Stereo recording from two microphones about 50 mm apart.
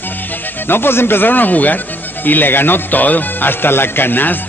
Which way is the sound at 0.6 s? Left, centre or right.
Left.